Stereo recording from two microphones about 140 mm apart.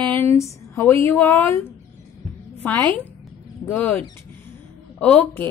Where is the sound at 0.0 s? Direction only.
15° left (ahead or behind).